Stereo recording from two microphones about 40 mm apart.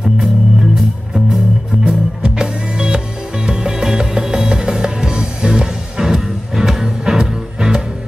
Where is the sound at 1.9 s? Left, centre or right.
Right.